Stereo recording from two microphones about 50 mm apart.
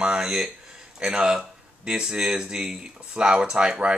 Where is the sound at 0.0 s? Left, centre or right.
Centre.